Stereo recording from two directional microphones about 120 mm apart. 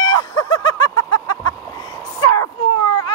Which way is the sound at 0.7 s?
30° left (ahead or behind).